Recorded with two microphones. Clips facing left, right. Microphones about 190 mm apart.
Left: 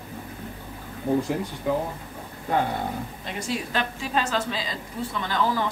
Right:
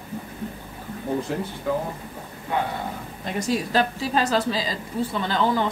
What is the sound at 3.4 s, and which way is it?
A woman's voice, 40° right (ahead or behind).